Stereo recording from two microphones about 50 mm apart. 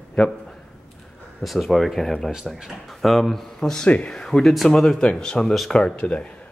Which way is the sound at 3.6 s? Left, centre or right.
Centre.